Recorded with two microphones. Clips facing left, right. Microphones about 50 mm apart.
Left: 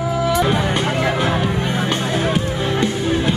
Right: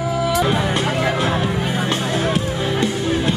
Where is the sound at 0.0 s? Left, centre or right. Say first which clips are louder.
Left 1 dB; centre.